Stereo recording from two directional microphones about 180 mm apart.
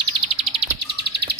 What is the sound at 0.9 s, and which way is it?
Bird, 65° right (ahead or behind).